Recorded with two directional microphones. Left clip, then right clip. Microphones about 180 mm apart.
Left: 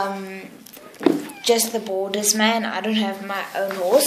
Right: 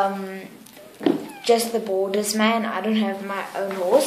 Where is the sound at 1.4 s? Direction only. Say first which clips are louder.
Even; 5° right (ahead or behind).